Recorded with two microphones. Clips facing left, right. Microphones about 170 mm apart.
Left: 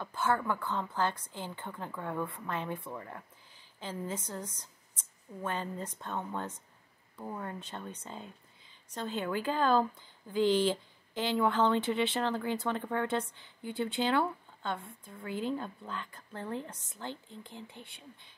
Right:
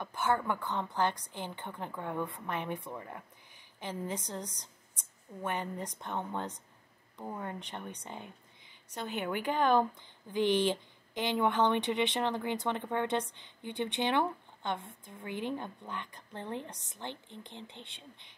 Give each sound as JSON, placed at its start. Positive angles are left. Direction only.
{"t": 0.0, "sound": "a woman's voice", "side_deg": -15}